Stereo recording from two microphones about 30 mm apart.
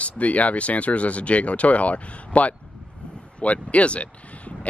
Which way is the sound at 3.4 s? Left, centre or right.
Left.